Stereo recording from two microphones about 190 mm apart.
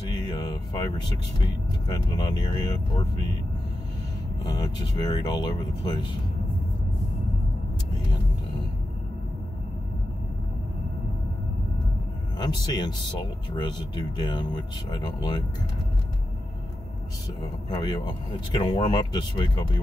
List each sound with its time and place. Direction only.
0.2 s a sound: 20° left (ahead or behind)
1.4 s speech: 20° left (ahead or behind)
4.5 s speech: 20° left (ahead or behind)
12.4 s speech: 20° left (ahead or behind)
17.6 s speech: 20° left (ahead or behind)